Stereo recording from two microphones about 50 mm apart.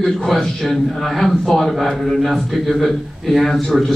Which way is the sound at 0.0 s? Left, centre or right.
Centre.